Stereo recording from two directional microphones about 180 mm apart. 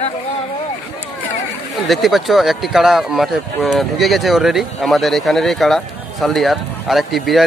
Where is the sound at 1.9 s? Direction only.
Centre (ahead or behind).